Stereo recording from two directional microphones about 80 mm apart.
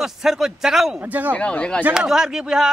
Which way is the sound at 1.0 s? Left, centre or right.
Right.